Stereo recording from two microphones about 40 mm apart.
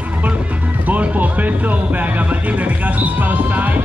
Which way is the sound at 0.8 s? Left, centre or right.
Right.